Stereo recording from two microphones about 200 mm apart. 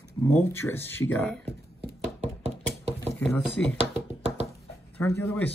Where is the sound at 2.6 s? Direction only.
10° left (ahead or behind).